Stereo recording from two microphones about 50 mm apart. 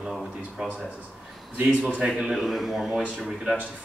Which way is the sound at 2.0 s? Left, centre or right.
Centre.